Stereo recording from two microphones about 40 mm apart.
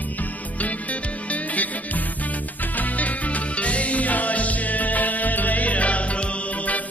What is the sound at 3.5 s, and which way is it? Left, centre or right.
Music, left.